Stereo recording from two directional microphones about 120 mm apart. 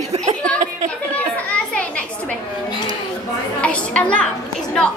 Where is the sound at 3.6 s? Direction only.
10° left (ahead or behind).